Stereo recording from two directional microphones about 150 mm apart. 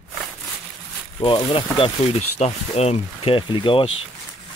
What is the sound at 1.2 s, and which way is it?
Speech, 35° left (ahead or behind).